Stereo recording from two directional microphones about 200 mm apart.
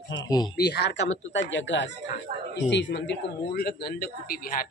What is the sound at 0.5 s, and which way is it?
A man's voice, 55° left (ahead or behind).